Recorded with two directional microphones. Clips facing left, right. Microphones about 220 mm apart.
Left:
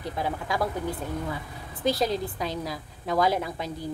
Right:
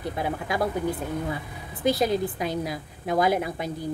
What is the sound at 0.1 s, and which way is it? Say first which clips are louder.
A woman's voice: even; 15° right (ahead or behind).